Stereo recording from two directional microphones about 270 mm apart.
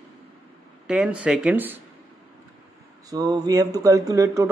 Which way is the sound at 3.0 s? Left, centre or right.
Centre.